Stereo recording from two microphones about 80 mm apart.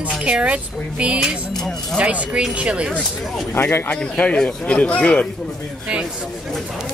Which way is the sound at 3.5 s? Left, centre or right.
Left.